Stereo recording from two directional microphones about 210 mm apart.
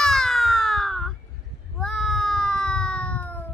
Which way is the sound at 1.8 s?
Centre (ahead or behind).